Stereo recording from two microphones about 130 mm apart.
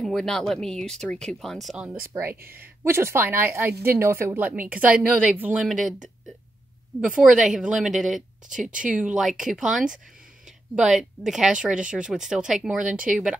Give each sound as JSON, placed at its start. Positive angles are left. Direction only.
{"t": 0.0, "sound": "speech", "side_deg": 5}
{"t": 2.1, "sound": "a woman's voice", "side_deg": -15}
{"t": 7.2, "sound": "a woman's voice", "side_deg": -5}